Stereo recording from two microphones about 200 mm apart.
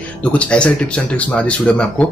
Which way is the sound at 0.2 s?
5° left (ahead or behind).